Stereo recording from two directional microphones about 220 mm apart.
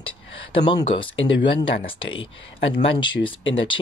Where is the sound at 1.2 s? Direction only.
55° left (ahead or behind).